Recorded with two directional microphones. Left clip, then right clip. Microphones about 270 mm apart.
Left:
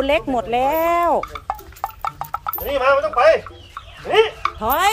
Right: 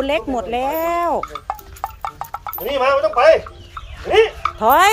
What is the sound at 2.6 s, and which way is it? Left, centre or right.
Speech, right.